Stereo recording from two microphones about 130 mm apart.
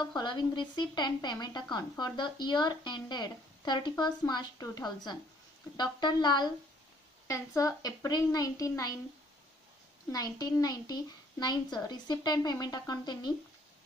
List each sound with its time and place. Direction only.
0.0 s a woman's voice: 35° left (ahead or behind)
10.1 s speech: 30° left (ahead or behind)